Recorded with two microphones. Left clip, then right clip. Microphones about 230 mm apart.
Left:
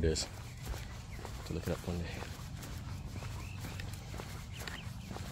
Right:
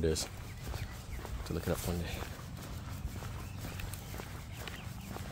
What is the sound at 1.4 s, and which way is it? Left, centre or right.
Speech, centre.